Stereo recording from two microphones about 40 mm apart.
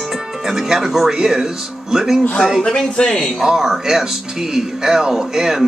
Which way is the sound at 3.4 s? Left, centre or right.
Centre.